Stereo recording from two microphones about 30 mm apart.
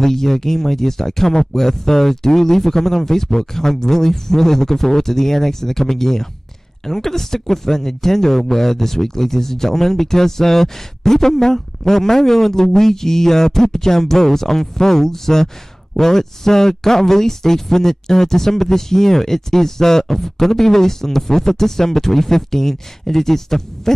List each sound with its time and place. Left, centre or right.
0.0 s speech: centre